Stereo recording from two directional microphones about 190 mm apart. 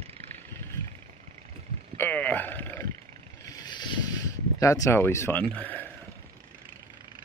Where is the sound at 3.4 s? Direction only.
20° left (ahead or behind).